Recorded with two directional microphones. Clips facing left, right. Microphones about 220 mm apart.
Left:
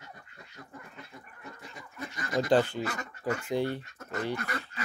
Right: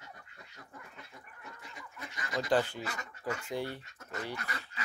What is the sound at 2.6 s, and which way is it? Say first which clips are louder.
Speech: left 5 dB; 55° left (ahead or behind).